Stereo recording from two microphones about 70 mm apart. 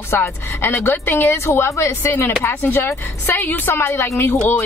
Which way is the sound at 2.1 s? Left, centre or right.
Left.